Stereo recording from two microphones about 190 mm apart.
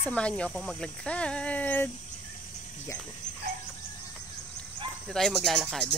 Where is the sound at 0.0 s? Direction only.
5° left (ahead or behind).